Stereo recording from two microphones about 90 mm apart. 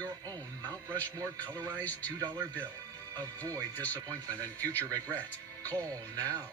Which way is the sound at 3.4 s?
35° right (ahead or behind).